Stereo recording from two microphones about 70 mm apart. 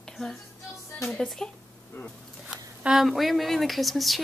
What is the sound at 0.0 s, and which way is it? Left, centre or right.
Music, centre.